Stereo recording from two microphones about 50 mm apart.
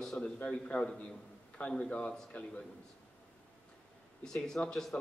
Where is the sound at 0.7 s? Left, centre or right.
Left.